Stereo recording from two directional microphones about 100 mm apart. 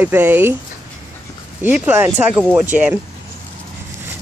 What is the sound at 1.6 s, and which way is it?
Speech, 20° right (ahead or behind).